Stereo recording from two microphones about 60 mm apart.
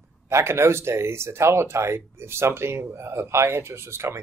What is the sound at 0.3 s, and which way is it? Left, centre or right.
Speech, right.